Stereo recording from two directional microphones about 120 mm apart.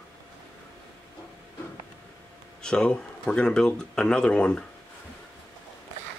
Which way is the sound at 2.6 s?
5° left (ahead or behind).